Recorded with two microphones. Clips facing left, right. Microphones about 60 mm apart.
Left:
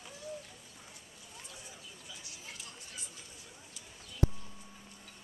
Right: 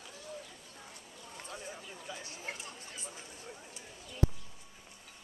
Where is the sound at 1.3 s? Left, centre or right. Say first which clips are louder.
Right 7 dB; right.